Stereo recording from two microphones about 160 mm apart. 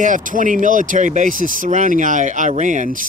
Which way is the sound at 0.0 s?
55° right (ahead or behind).